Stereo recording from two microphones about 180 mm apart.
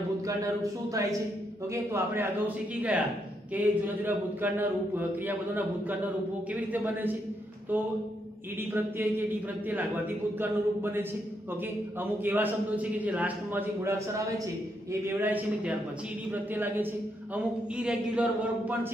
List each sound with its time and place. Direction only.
0.4 s a man's voice: 20° right (ahead or behind)
8.7 s a man's voice: 10° right (ahead or behind)